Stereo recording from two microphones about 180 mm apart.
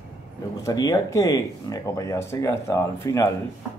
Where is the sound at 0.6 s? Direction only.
20° left (ahead or behind).